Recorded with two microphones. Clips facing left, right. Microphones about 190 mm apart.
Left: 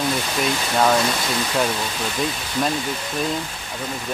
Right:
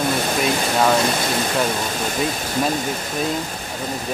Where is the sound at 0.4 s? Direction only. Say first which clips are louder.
Even; centre (ahead or behind).